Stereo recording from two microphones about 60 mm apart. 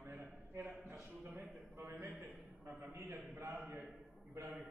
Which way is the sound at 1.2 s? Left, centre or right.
Right.